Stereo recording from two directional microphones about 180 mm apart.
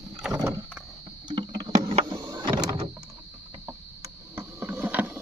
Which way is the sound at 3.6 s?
15° right (ahead or behind).